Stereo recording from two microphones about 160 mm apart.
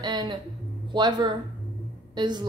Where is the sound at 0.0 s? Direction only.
25° right (ahead or behind).